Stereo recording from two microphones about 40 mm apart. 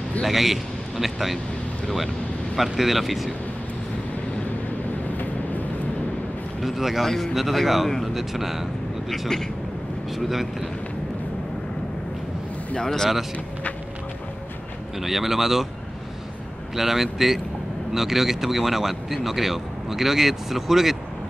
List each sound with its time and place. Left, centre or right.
0.2 s a man's voice: centre
2.5 s speech: centre
5.1 s vehicle: left
6.6 s speech: centre
10.1 s speech: centre
12.7 s speech: centre
15.0 s speech: centre
16.7 s speech: centre